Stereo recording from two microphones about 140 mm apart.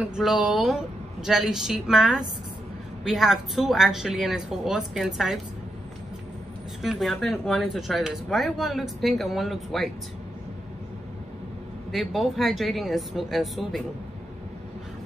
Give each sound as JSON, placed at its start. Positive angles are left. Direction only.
{"t": 0.0, "sound": "speech", "side_deg": -5}
{"t": 6.8, "sound": "speech", "side_deg": 0}
{"t": 11.9, "sound": "speech", "side_deg": 0}